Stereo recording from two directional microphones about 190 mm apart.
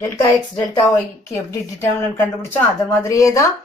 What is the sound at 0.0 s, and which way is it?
A woman's voice, 20° left (ahead or behind).